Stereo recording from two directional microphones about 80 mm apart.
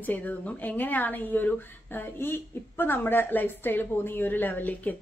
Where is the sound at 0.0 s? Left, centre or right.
Left.